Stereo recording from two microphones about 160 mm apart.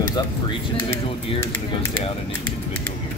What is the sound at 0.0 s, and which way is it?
Speech, 25° left (ahead or behind).